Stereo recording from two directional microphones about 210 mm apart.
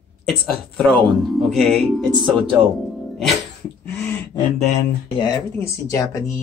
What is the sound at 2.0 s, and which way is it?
Speech, 20° right (ahead or behind).